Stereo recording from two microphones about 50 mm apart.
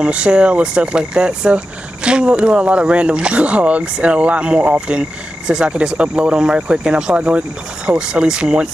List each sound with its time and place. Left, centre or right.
0.0 s speech: right